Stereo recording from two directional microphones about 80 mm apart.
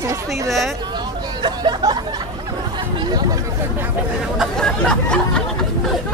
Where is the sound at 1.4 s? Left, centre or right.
Right.